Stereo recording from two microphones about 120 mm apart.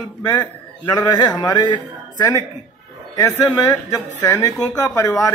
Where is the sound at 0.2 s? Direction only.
35° left (ahead or behind).